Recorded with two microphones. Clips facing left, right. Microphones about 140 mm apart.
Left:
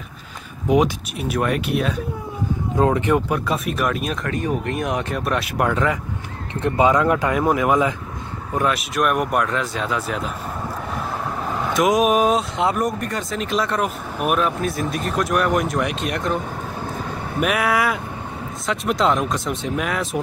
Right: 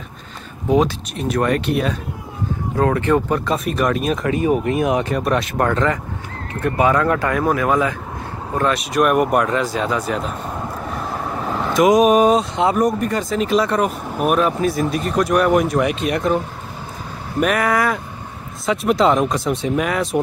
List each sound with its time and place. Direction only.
0.7 s speech: 10° left (ahead or behind)
2.8 s speech: 15° left (ahead or behind)
3.3 s speech: 5° left (ahead or behind)
6.6 s speech: 20° left (ahead or behind)
8.6 s speech: centre (ahead or behind)
11.7 s speech: centre (ahead or behind)
17.4 s speech: 5° left (ahead or behind)